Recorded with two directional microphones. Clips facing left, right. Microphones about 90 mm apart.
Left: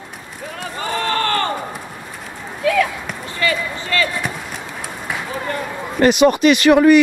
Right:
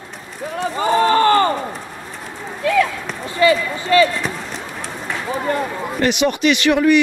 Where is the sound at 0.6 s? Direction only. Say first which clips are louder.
Right 8 dB; 20° right (ahead or behind).